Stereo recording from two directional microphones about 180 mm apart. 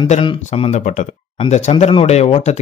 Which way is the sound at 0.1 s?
35° left (ahead or behind).